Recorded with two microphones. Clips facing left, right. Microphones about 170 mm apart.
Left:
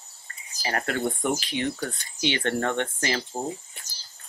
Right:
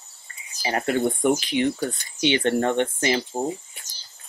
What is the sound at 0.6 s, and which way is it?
Speech, 15° right (ahead or behind).